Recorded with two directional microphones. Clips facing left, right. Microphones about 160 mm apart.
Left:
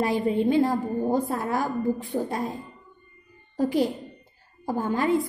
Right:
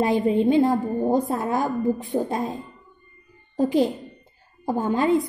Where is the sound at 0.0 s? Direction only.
20° right (ahead or behind).